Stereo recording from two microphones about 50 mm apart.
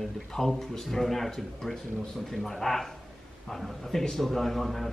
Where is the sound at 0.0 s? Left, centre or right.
Centre.